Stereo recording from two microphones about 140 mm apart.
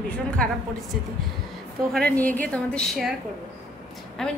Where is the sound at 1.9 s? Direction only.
5° left (ahead or behind).